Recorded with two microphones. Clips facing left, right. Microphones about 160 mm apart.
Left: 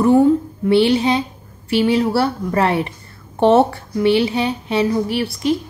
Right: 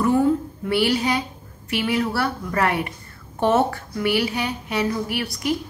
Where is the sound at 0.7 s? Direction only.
25° left (ahead or behind).